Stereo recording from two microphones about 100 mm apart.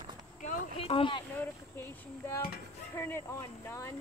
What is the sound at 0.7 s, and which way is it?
Speech, 70° left (ahead or behind).